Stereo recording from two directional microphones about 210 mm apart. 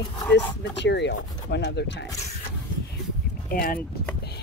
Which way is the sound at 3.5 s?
45° left (ahead or behind).